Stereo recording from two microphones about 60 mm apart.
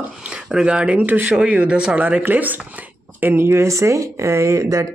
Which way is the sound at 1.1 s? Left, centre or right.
Right.